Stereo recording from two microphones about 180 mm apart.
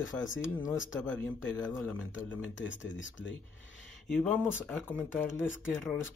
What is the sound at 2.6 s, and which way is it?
Speech, 90° left.